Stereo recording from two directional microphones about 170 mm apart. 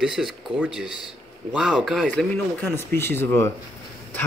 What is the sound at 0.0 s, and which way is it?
Speech, 5° right (ahead or behind).